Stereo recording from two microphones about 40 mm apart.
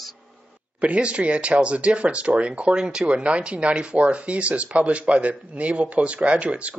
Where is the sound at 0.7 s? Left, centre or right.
Right.